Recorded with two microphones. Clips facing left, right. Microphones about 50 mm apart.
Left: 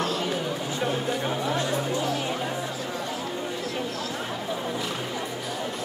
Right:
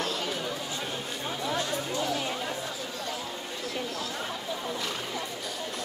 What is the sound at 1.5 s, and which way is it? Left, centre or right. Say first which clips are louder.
Chatter: left 2 dB; left.